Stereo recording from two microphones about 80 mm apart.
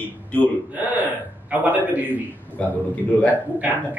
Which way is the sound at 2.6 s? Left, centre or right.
Centre.